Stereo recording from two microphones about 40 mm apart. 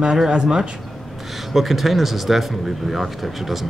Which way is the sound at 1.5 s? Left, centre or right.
Centre.